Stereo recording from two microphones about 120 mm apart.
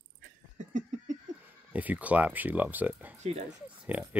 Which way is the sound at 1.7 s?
15° right (ahead or behind).